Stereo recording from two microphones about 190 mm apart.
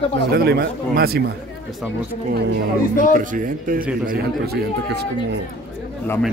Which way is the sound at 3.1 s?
45° right (ahead or behind).